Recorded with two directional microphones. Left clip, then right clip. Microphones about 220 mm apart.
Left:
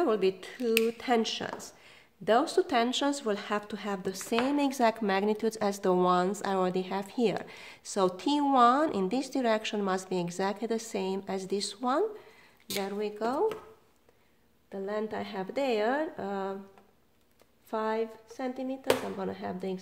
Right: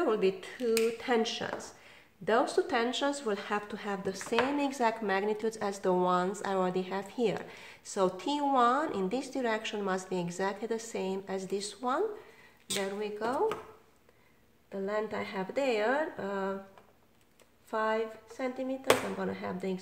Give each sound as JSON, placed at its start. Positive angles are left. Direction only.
{"t": 0.0, "sound": "a woman's voice", "side_deg": 45}
{"t": 14.7, "sound": "a woman's voice", "side_deg": 35}
{"t": 17.6, "sound": "a woman's voice", "side_deg": 40}